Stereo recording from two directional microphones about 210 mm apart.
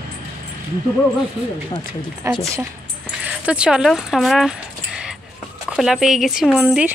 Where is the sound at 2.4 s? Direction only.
15° right (ahead or behind).